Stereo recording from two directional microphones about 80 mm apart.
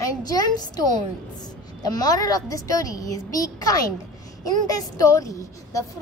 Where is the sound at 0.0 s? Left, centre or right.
Left.